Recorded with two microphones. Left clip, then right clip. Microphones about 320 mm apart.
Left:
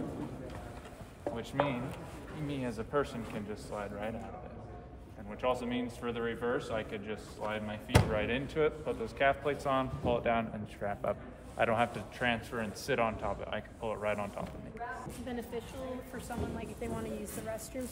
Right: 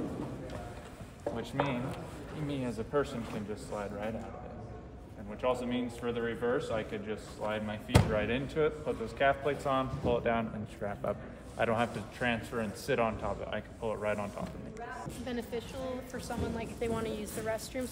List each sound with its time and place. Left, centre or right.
1.2 s a man's voice: centre
5.4 s a man's voice: centre